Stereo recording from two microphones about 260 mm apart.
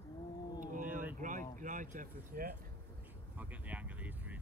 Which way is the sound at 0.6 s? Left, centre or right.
Right.